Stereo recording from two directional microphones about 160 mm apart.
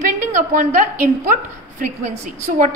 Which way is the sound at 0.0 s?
50° right (ahead or behind).